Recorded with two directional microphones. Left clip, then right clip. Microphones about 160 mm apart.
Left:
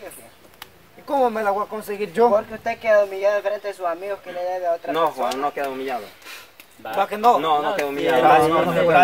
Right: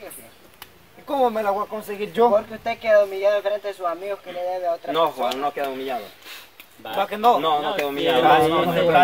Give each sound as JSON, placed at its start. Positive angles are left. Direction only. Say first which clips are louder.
{"t": 1.0, "sound": "a man's voice", "louder": "left 1 dB", "side_deg": 0}
{"t": 2.3, "sound": "a man's voice", "louder": "even", "side_deg": 15}
{"t": 4.9, "sound": "a man's voice", "louder": "even", "side_deg": -5}